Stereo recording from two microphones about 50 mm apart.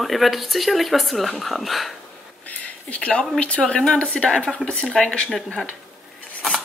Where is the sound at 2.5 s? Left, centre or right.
Left.